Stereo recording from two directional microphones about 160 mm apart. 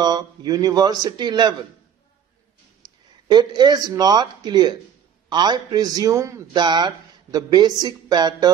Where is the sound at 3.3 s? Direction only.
25° right (ahead or behind).